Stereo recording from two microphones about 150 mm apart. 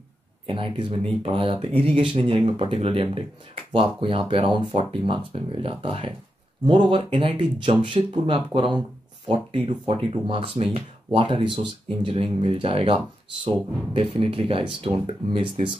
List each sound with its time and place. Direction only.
0.5 s speech: 35° right (ahead or behind)